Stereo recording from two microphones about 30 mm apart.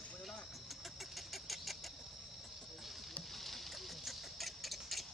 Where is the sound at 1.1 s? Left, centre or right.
Centre.